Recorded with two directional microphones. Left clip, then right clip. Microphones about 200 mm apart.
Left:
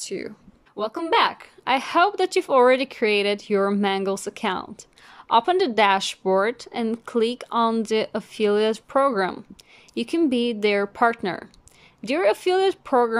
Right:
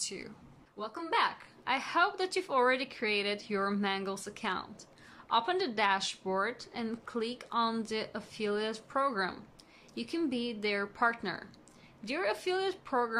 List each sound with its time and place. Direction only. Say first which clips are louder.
0.0 s speech: left 10 dB; 40° left (ahead or behind)